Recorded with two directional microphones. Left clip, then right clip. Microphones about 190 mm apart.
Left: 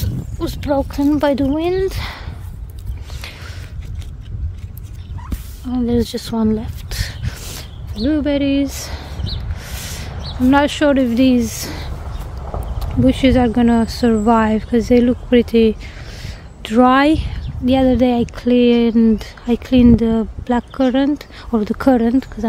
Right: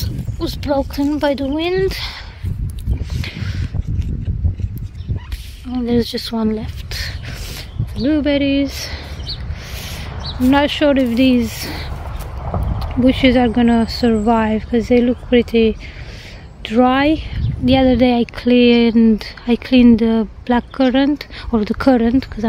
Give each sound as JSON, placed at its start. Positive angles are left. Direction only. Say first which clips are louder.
{"t": 0.0, "sound": "speech", "louder": "even", "side_deg": 5}
{"t": 3.2, "sound": "boat", "louder": "right 3 dB", "side_deg": 10}
{"t": 5.7, "sound": "a sound", "louder": "even", "side_deg": 0}
{"t": 7.9, "sound": "speech", "louder": "right 1 dB", "side_deg": 0}
{"t": 10.5, "sound": "speech", "louder": "even", "side_deg": 10}
{"t": 17.6, "sound": "speech", "louder": "right 1 dB", "side_deg": 0}